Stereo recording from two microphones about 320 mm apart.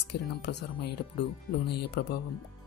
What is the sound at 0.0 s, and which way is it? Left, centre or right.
Speech, left.